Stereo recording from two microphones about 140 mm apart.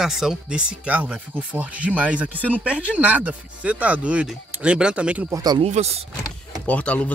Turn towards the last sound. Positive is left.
turn(degrees=10)  # may be behind; listen again after turning